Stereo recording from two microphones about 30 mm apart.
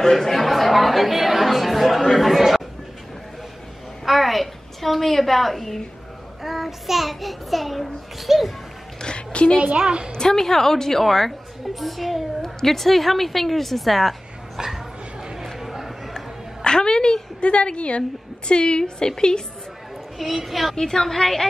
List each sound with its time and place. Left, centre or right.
0.0 s speech: centre
4.0 s a woman's voice: centre
6.4 s speech: centre
9.0 s a woman's voice: left
9.8 s a woman's voice: right
10.1 s a woman's voice: left; by 14.1 s centre
14.6 s a woman's voice: centre
15.4 s a sound: centre
16.6 s a woman's voice: left
17.4 s a woman's voice: left
18.5 s a woman's voice: left
20.2 s speech: centre
20.7 s a woman's voice: centre